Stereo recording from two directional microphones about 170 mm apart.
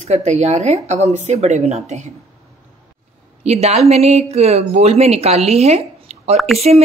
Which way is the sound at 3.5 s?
40° right (ahead or behind).